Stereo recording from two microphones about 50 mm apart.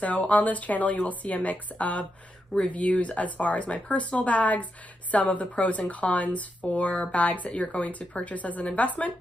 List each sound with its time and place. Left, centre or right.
0.0 s speech: left